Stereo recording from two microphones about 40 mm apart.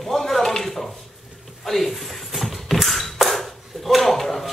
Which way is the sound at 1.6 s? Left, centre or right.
Centre.